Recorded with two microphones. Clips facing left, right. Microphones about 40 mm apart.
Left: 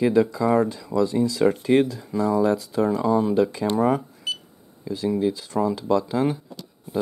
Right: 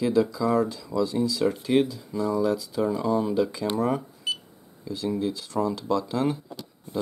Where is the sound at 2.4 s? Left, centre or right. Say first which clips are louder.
Left 4 dB; left.